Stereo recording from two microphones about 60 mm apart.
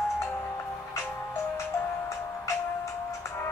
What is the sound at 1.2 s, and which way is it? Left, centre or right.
Music, left.